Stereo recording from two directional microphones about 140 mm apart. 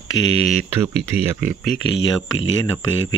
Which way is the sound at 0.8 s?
15° right (ahead or behind).